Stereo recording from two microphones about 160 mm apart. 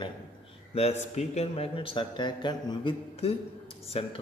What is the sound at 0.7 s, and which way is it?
A man's voice, 40° left (ahead or behind).